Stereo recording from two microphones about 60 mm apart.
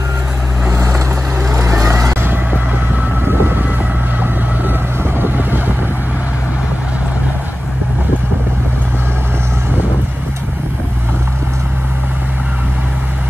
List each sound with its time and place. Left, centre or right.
0.7 s vehicle: right
1.5 s vehicle: right
3.3 s music: right
5.2 s vehicle: right